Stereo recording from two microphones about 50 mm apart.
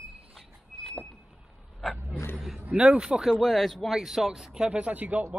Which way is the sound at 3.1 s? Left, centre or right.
Centre.